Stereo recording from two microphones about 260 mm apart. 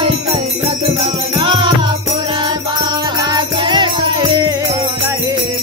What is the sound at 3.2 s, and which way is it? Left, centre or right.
Music, centre.